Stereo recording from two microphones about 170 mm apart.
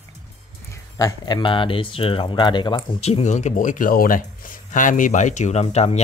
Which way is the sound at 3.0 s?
40° left (ahead or behind).